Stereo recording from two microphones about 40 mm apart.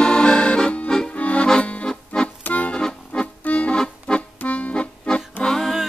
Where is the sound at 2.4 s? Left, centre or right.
Left.